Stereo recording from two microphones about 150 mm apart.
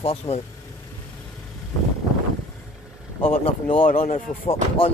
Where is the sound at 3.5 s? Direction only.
35° left (ahead or behind).